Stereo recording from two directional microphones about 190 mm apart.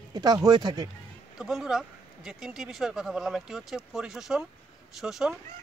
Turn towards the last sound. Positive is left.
turn(degrees=0)  # may be behind; listen again after turning